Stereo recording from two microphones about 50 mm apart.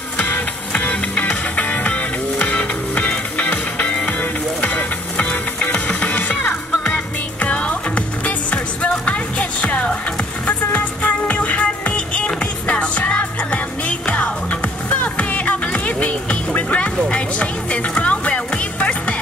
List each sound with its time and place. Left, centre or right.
0.2 s music: left